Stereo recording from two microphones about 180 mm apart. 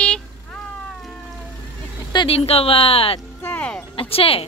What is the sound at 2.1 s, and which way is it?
Speech, 30° left (ahead or behind).